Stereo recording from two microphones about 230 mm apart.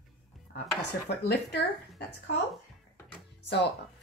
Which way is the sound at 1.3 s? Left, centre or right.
Left.